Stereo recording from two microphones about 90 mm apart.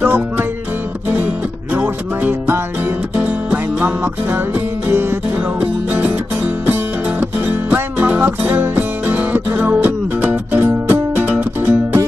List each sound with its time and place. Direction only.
0.0 s music: 25° right (ahead or behind)
1.8 s music: 20° right (ahead or behind)
5.6 s music: 20° right (ahead or behind)